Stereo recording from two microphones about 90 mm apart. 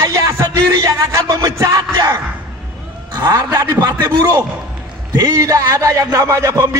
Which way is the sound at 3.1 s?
45° right (ahead or behind).